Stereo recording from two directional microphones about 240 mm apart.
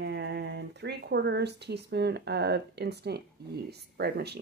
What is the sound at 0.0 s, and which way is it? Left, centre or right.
Speech, right.